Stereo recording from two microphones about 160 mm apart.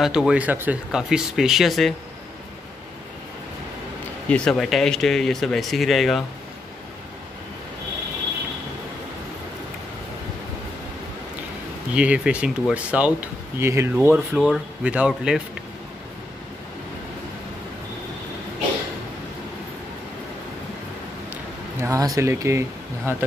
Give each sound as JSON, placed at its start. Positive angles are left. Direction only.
{"t": 0.0, "sound": "speech", "side_deg": -5}
{"t": 4.3, "sound": "speech", "side_deg": 0}
{"t": 11.9, "sound": "speech", "side_deg": -5}
{"t": 21.3, "sound": "a sound", "side_deg": -15}